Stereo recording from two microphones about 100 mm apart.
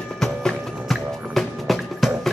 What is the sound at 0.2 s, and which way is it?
Music, 5° left (ahead or behind).